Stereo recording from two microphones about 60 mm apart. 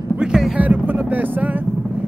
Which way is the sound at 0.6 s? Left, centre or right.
Right.